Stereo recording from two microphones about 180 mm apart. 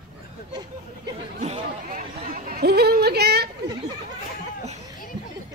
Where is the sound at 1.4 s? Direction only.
45° right (ahead or behind); by 3.4 s 65° right (ahead or behind).